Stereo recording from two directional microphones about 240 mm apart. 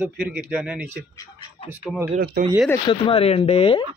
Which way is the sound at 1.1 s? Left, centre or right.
Centre.